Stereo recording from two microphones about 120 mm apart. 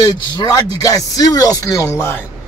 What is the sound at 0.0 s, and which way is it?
A man's voice, 30° left (ahead or behind).